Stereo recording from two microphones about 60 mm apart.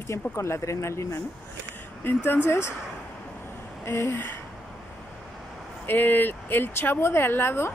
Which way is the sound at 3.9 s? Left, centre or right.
Left.